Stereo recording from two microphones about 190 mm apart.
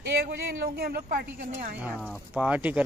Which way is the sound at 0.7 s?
55° right (ahead or behind).